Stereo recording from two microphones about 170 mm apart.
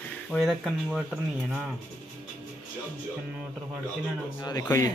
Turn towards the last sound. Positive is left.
turn(degrees=20)  # may be behind; listen again after turning